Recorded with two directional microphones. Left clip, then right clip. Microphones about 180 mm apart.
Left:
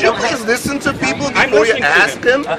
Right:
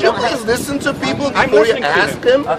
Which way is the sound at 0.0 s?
20° right (ahead or behind).